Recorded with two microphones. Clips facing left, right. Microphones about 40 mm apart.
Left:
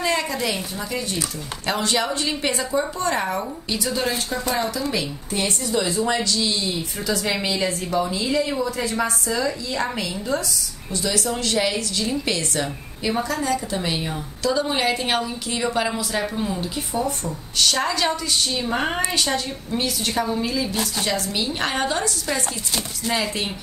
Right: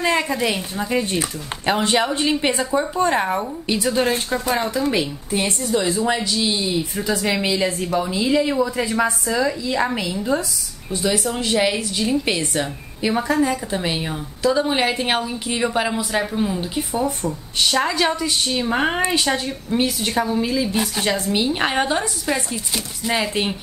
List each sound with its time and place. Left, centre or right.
0.0 s a woman's voice: centre